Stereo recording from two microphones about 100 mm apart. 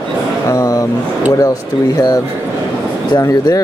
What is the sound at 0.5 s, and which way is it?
Vehicle, 35° left (ahead or behind).